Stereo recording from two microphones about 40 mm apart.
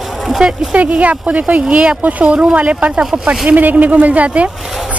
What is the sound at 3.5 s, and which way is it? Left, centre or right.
Speech, right.